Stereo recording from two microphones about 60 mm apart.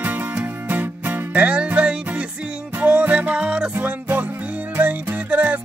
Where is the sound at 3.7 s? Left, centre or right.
Right.